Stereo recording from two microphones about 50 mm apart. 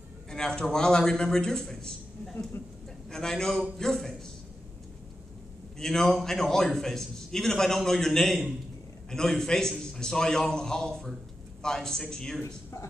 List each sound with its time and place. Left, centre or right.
0.3 s a man's voice: centre
3.1 s a man's voice: centre
5.8 s a man's voice: centre